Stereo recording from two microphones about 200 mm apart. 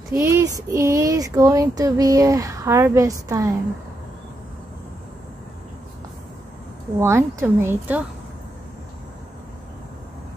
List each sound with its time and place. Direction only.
0.2 s child singing: 15° right (ahead or behind)
7.0 s child singing: 15° right (ahead or behind)